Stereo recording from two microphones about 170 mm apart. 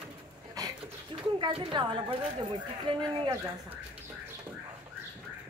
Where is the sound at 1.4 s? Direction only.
30° right (ahead or behind).